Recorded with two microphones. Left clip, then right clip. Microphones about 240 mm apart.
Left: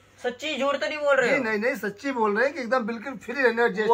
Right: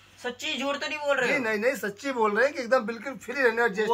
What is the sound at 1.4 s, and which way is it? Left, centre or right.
Speech, centre.